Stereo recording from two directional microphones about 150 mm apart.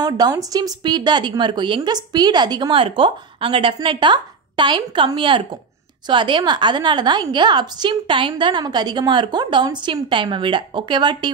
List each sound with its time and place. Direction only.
0.0 s a woman's voice: 25° right (ahead or behind)